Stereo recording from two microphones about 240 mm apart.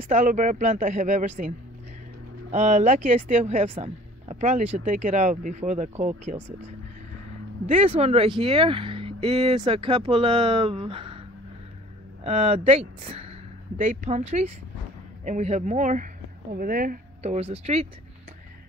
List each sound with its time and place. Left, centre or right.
0.1 s speech: right
2.5 s speech: right
7.6 s speech: right